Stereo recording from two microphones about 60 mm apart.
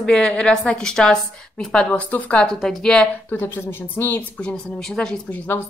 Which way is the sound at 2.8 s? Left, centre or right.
Centre.